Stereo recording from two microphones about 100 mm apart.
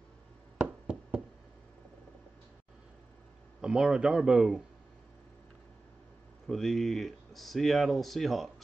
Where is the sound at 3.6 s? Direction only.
10° right (ahead or behind).